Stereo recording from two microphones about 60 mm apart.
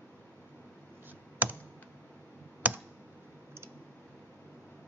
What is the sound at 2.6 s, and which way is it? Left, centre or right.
Computer keyboard, right.